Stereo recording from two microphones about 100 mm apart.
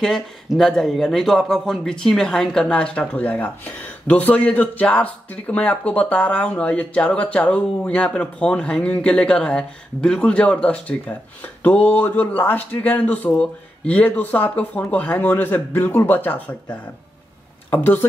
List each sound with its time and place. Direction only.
0.0 s a man's voice: 5° left (ahead or behind); by 18.0 s 20° left (ahead or behind)